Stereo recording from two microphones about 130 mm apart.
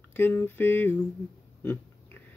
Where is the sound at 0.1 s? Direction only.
15° left (ahead or behind).